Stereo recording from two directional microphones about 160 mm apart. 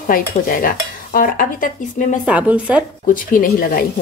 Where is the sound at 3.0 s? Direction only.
60° left (ahead or behind).